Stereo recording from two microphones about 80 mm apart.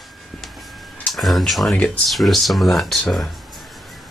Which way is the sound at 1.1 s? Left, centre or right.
Centre.